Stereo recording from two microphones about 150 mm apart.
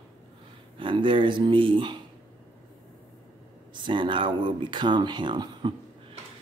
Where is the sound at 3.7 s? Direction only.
30° right (ahead or behind).